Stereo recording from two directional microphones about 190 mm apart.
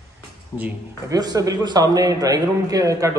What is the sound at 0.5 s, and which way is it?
A man's voice, 10° right (ahead or behind).